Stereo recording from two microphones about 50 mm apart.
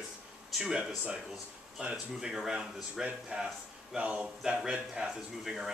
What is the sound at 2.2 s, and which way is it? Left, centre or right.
Speech, centre.